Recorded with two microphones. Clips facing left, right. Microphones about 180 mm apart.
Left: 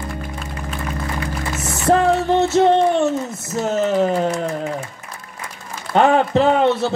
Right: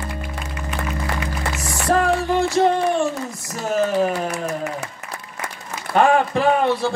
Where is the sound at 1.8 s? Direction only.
25° left (ahead or behind).